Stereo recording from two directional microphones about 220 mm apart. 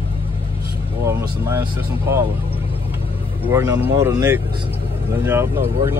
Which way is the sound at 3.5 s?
15° right (ahead or behind).